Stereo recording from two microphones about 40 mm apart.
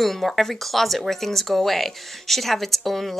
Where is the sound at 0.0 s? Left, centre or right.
Centre.